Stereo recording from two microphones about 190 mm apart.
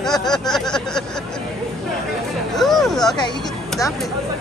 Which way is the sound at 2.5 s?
Centre (ahead or behind).